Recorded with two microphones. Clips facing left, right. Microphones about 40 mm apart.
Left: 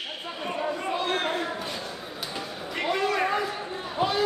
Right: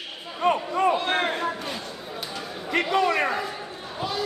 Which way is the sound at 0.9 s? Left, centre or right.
Right.